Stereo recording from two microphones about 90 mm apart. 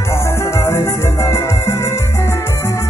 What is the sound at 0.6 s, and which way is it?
Music, 30° left (ahead or behind).